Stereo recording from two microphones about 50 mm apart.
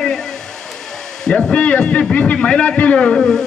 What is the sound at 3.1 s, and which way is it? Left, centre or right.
Speech, centre.